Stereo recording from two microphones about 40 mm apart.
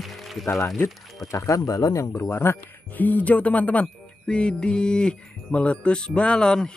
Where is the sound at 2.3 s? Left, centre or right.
Left.